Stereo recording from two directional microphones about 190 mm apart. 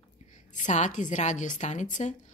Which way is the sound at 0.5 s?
40° left (ahead or behind).